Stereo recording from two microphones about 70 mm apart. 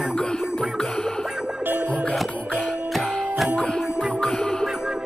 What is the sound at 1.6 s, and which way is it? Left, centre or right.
Music, right.